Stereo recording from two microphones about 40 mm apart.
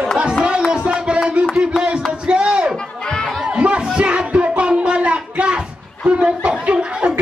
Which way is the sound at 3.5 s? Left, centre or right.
Right.